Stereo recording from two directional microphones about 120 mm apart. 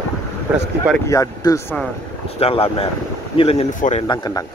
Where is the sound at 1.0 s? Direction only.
30° left (ahead or behind).